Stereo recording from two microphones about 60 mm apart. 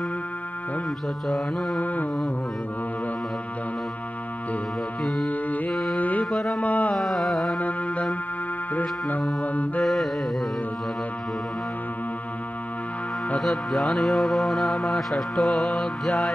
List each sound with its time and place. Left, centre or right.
1.3 s music: centre
1.8 s mantra: left
5.2 s music: left
5.7 s music: centre
5.9 s music: left
6.3 s carnatic music: centre
6.6 s carnatic music: left
7.0 s music: centre
7.5 s music: left
9.4 s mantra: left
13.4 s music: centre